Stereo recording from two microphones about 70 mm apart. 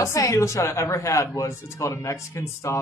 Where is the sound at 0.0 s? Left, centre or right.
Left.